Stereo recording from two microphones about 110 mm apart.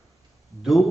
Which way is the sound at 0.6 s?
Centre (ahead or behind).